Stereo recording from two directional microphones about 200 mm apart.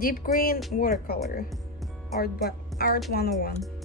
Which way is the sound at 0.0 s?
45° left (ahead or behind).